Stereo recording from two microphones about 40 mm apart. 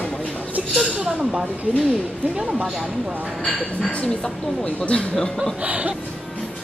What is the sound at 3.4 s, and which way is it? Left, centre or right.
Speech, centre.